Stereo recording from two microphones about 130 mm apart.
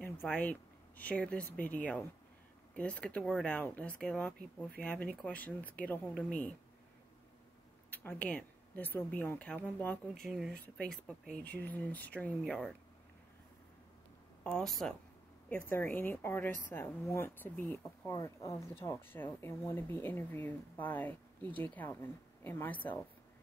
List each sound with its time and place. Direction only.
0.3 s speech: 10° left (ahead or behind)
7.9 s speech: 15° left (ahead or behind)
14.4 s speech: 5° left (ahead or behind)
15.7 s speech: 15° left (ahead or behind)
18.1 s speech: 25° left (ahead or behind)